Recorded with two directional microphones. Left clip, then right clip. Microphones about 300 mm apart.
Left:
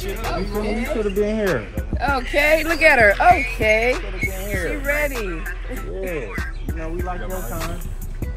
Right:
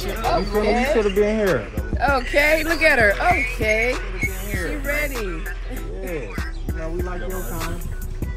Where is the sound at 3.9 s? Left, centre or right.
Centre.